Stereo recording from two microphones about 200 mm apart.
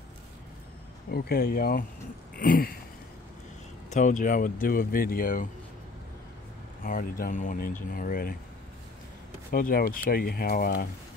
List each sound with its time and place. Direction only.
1.1 s speech: 50° left (ahead or behind)
2.3 s a sound: 45° left (ahead or behind)
3.9 s speech: 40° left (ahead or behind)
6.8 s speech: 45° left (ahead or behind)
9.5 s speech: 50° left (ahead or behind)